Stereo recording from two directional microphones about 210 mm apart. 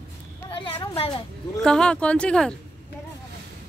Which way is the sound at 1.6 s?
5° left (ahead or behind).